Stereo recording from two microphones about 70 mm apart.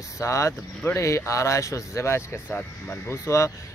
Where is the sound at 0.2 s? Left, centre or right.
Left.